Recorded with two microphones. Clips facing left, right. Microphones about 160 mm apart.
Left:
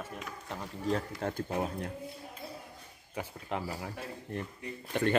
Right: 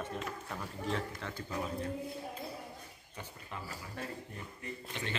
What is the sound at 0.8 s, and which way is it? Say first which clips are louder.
Speech: left 6 dB; 45° left (ahead or behind).